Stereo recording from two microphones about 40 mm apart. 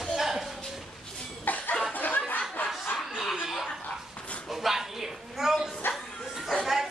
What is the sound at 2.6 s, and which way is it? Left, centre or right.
Snicker, left.